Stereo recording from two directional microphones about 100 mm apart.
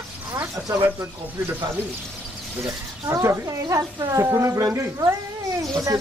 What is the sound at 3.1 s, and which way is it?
Speech, 30° right (ahead or behind).